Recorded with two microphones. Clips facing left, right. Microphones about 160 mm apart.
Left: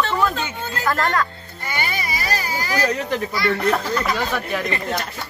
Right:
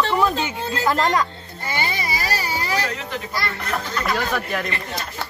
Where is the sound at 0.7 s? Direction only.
20° right (ahead or behind).